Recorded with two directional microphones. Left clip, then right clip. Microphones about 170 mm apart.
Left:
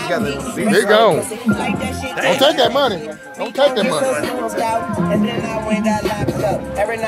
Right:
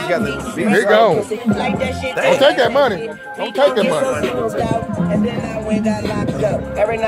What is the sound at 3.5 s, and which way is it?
Speech, 5° left (ahead or behind).